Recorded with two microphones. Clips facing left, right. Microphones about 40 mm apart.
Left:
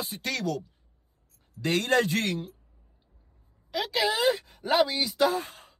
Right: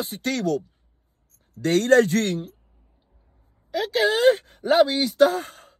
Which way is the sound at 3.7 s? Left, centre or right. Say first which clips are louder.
Right 5 dB; right.